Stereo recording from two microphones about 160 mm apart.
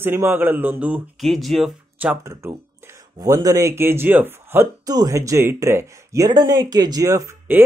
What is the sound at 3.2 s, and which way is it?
Speech, 25° right (ahead or behind).